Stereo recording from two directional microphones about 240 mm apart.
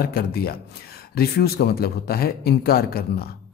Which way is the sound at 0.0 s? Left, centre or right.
Left.